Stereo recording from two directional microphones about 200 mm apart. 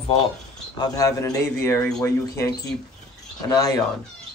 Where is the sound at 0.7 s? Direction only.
20° left (ahead or behind).